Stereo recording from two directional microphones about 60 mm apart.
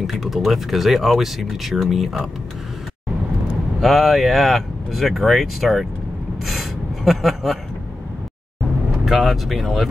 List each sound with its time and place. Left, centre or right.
0.0 s speech: centre
3.8 s speech: centre
9.0 s speech: centre